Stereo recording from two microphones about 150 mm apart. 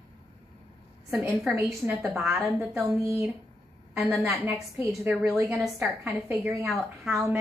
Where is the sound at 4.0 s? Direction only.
10° right (ahead or behind).